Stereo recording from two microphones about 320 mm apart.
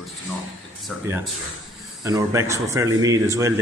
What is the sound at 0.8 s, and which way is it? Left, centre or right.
Speech, centre.